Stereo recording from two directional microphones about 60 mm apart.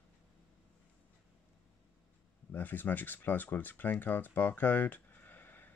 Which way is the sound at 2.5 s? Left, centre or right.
Left.